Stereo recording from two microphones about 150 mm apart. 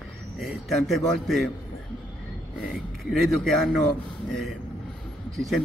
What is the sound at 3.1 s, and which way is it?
Speech, 5° left (ahead or behind).